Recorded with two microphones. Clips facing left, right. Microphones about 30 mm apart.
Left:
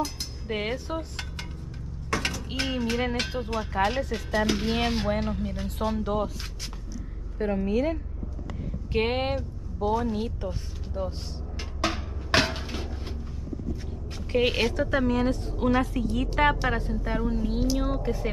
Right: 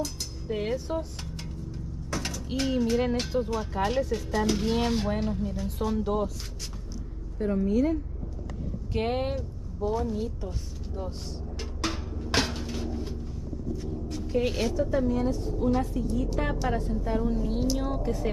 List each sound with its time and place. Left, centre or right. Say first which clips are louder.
0.5 s a woman's voice: even; left
2.1 s mechanisms: left 4 dB; left
2.5 s a woman's voice: right 4 dB; left
3.7 s speech: left 1 dB; left
7.3 s a woman's voice: even; left
11.0 s a sound: left 4 dB; left
13.7 s vehicle: right 5 dB; left
14.2 s a woman's voice: left 4 dB; left
14.9 s speech: left 2 dB; left
15.8 s speech: left 2 dB; left
16.5 s speech: left 1 dB; left